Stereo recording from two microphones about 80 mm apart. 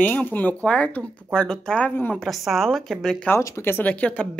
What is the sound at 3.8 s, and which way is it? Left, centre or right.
Speech, centre.